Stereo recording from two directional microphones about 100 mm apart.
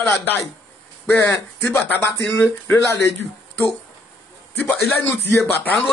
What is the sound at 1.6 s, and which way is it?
Speech, 25° left (ahead or behind).